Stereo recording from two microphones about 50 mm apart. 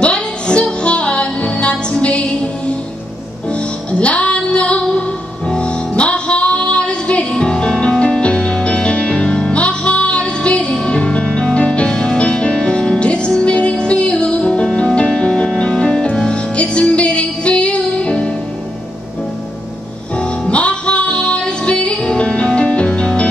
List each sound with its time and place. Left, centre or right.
0.0 s music: left
4.0 s music: left
20.2 s music: left